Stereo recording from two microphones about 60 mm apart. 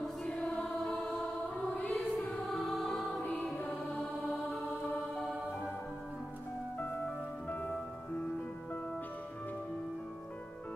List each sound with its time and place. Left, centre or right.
0.0 s choir: centre
2.0 s music: centre
3.5 s music: left
6.8 s music: left